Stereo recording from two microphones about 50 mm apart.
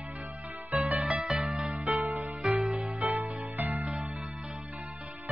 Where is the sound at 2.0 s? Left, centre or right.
Right.